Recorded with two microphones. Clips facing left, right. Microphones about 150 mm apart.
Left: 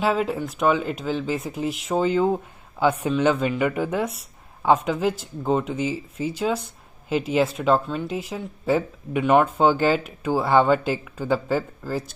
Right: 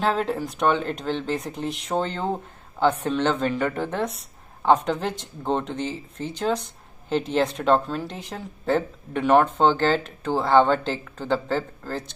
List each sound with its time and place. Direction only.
0.0 s speech: 5° left (ahead or behind)